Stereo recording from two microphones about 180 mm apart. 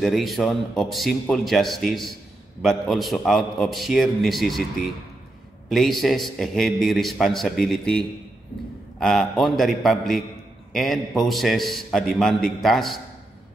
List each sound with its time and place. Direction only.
0.0 s a man's voice: centre (ahead or behind)